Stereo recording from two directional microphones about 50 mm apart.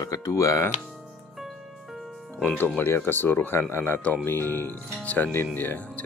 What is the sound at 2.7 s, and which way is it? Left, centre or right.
Speech, left.